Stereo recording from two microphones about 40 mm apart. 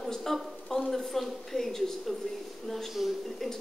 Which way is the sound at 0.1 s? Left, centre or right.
Centre.